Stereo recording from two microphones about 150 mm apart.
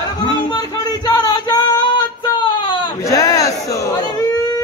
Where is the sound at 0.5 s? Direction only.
25° left (ahead or behind).